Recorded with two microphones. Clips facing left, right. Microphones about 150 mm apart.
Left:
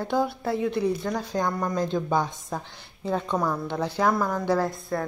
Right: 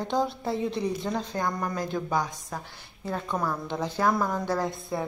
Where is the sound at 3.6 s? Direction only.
10° right (ahead or behind).